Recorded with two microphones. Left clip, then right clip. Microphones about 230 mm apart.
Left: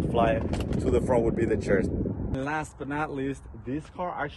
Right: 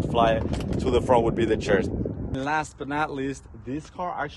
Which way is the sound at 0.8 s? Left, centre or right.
Centre.